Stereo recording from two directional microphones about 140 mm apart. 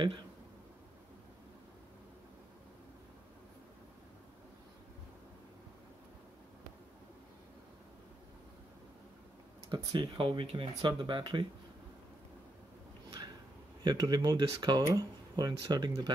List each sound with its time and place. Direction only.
9.9 s speech: 40° right (ahead or behind)
13.8 s speech: 30° right (ahead or behind)